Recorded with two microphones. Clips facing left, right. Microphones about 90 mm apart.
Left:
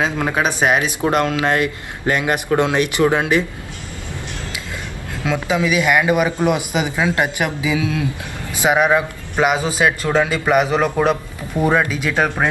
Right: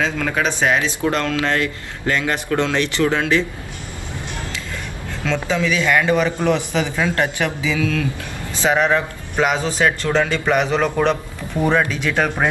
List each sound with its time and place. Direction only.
0.0 s a man's voice: 20° left (ahead or behind)
5.2 s a man's voice: 10° left (ahead or behind)